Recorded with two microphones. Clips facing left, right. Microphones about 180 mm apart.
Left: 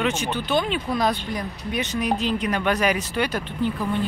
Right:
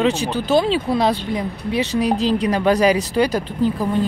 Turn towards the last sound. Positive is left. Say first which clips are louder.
# right 5 dB
turn(degrees=-40)  # may be behind; listen again after turning